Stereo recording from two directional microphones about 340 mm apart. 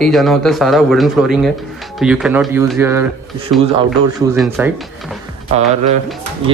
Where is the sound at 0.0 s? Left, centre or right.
Centre.